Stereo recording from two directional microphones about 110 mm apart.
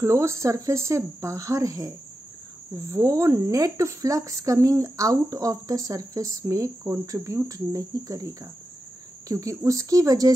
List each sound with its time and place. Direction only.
0.0 s speech: 25° right (ahead or behind)